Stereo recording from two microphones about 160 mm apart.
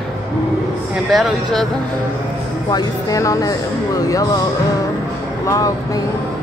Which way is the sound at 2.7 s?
20° left (ahead or behind).